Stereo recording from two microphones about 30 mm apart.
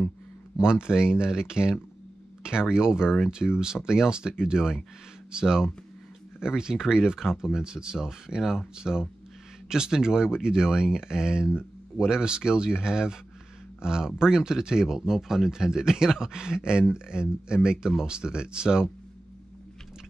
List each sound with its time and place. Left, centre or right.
0.6 s speech: right
8.7 s speech: right